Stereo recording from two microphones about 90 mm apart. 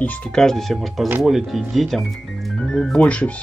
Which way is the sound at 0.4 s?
5° left (ahead or behind).